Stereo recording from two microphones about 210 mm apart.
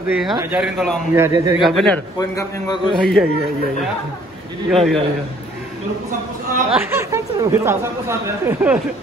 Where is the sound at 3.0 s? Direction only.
5° left (ahead or behind).